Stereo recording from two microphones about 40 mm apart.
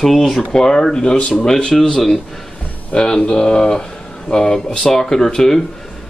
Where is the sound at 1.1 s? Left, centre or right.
Left.